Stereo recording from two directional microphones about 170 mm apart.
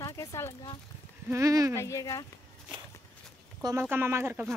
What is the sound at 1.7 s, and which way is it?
Speech, 15° left (ahead or behind).